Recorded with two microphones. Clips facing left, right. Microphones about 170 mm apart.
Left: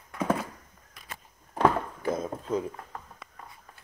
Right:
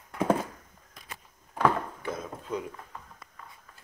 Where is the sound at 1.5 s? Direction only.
35° left (ahead or behind).